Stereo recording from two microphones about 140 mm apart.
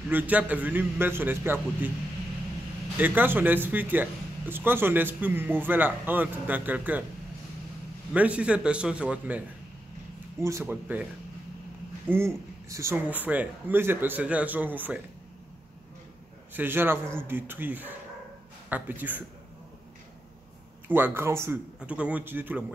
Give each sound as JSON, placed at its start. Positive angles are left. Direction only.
{"t": 0.1, "sound": "speech", "side_deg": -10}
{"t": 3.0, "sound": "speech", "side_deg": -15}
{"t": 8.1, "sound": "speech", "side_deg": -10}
{"t": 10.4, "sound": "speech", "side_deg": -15}
{"t": 12.1, "sound": "speech", "side_deg": -20}
{"t": 16.5, "sound": "speech", "side_deg": -15}
{"t": 20.9, "sound": "speech", "side_deg": -15}